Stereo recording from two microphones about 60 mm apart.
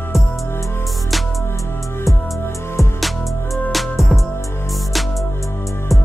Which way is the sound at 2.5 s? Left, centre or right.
Left.